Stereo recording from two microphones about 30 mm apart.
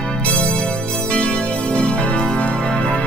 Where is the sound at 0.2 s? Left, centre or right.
Left.